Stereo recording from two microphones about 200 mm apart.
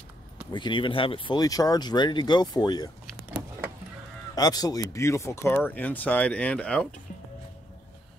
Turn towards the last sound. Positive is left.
turn(degrees=5)  # may be behind; listen again after turning